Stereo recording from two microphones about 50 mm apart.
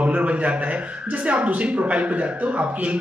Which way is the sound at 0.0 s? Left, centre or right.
Right.